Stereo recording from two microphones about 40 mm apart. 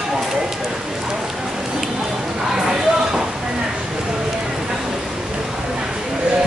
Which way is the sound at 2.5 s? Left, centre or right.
Centre.